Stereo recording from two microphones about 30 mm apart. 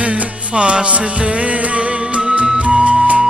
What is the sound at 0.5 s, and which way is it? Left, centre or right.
Music, right.